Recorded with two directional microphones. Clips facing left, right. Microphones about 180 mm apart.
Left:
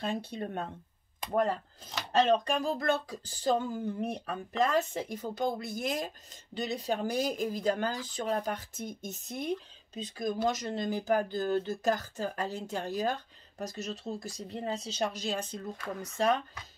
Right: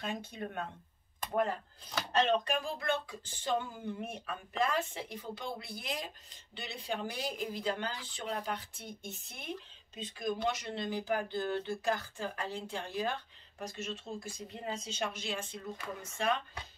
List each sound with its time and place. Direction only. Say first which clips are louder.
0.0 s speech: left 5 dB; 35° left (ahead or behind)
2.1 s speech: left 4 dB; 40° left (ahead or behind)